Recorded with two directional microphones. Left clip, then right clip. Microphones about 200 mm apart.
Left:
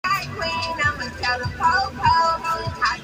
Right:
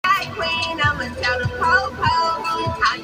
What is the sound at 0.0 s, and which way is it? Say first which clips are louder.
Music: right 4 dB; 25° right (ahead or behind).